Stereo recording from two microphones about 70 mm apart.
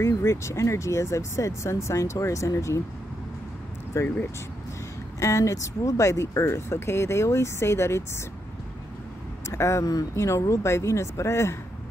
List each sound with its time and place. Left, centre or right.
0.0 s speech: left
3.9 s speech: left
5.2 s speech: left
9.5 s speech: left